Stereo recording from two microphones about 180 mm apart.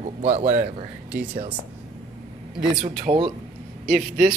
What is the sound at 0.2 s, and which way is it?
Speech, 40° right (ahead or behind).